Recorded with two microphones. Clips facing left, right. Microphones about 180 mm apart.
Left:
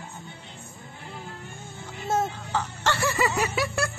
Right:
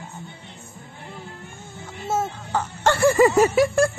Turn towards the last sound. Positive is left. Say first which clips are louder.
# right 10 dB
turn(degrees=-45)  # may be behind; listen again after turning